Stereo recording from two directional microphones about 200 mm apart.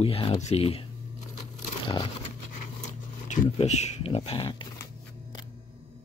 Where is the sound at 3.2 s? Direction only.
40° left (ahead or behind).